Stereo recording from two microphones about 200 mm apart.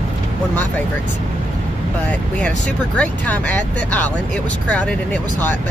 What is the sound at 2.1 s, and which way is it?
Speech, 5° left (ahead or behind).